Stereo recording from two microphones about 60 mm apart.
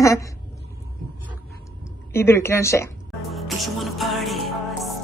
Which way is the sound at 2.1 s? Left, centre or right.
Left.